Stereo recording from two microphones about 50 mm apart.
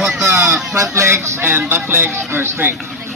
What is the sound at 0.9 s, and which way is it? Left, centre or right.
Speech, right.